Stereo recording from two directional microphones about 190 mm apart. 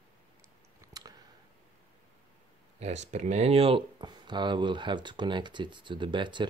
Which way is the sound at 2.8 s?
35° right (ahead or behind).